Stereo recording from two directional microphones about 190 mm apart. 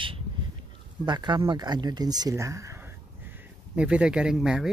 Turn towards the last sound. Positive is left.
turn(degrees=0)  # may be behind; listen again after turning